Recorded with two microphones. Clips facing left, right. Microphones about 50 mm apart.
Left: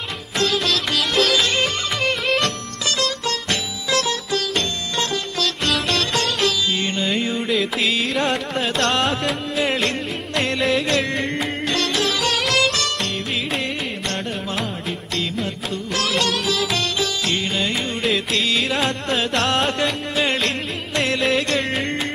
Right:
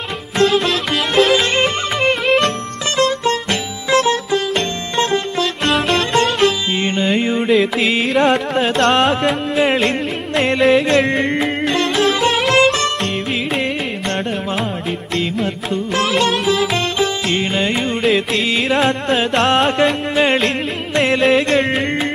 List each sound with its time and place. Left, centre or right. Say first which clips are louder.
0.4 s music: right 6 dB; centre
5.6 s music: right 6 dB; centre
6.7 s music: right 5 dB; right
8.0 s carnatic music: right 7 dB; centre
10.7 s music: right 7 dB; centre
15.1 s music: right 5 dB; centre
15.7 s music: right 7 dB; right
16.1 s music: right 4 dB; centre
16.4 s music: right 5 dB; right
18.0 s music: right 4 dB; centre
20.2 s music: right 5 dB; centre
21.5 s music: right 6 dB; right